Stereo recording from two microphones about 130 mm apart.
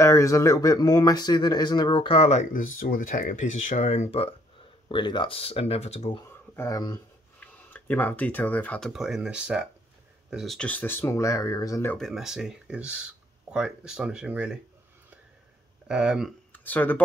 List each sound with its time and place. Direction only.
0.0 s speech: 25° left (ahead or behind); by 2.4 s 50° left (ahead or behind)
2.5 s speech: 90° left; by 4.4 s 50° left (ahead or behind)
4.8 s speech: 35° left (ahead or behind); by 6.1 s 55° left (ahead or behind)
6.5 s speech: 20° left (ahead or behind); by 10.7 s centre (ahead or behind)
10.7 s speech: 15° left (ahead or behind)
12.0 s speech: 5° right (ahead or behind)
15.9 s speech: 5° right (ahead or behind)
16.5 s speech: 15° left (ahead or behind)